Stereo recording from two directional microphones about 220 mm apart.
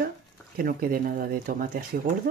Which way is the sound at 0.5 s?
40° right (ahead or behind).